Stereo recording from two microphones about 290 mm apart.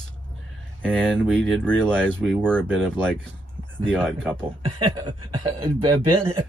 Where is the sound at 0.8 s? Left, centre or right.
Centre.